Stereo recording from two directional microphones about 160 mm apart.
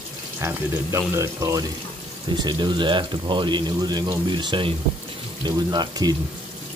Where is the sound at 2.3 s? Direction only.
30° right (ahead or behind).